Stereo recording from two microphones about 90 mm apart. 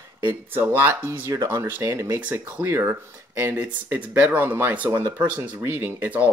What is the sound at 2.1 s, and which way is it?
Speech, 15° right (ahead or behind).